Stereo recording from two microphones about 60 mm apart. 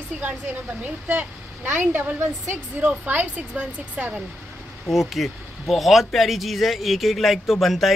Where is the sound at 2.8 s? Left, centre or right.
Right.